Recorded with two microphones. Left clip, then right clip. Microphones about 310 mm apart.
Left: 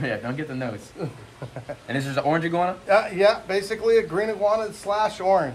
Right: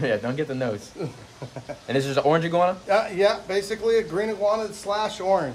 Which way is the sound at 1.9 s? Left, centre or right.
Centre.